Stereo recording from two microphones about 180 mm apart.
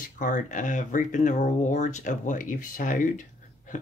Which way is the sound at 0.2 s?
45° left (ahead or behind).